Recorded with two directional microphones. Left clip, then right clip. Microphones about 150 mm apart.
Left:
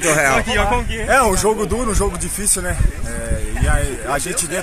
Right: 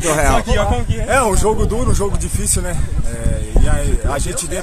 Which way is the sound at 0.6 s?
30° right (ahead or behind).